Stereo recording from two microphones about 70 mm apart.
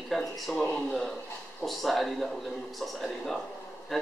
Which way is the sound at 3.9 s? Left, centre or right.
Centre.